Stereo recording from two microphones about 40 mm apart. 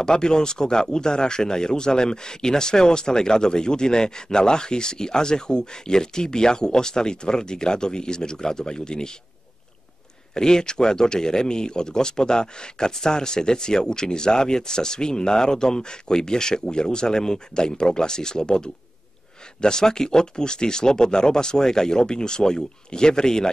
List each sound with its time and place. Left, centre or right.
0.0 s speech: centre
10.3 s speech: centre